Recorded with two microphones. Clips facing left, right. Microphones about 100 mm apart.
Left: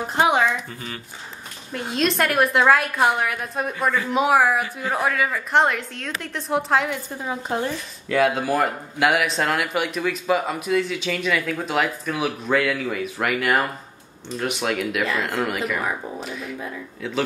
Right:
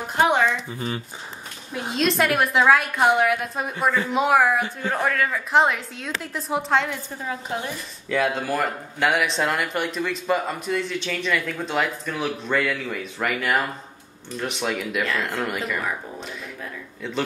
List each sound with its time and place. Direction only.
0.2 s a sound: 5° left (ahead or behind)
0.7 s speech: 30° right (ahead or behind)
1.7 s speech: centre (ahead or behind)
8.1 s speech: 5° left (ahead or behind)
16.2 s music: centre (ahead or behind)
17.0 s speech: centre (ahead or behind)